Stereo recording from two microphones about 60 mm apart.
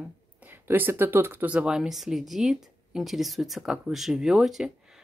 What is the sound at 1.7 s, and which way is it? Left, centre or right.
Speech, centre.